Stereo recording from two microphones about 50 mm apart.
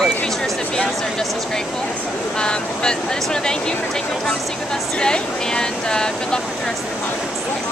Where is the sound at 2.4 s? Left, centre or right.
Centre.